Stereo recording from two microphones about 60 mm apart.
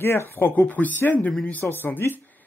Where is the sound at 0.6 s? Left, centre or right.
Left.